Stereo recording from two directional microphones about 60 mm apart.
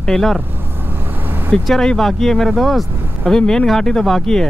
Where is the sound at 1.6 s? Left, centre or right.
Centre.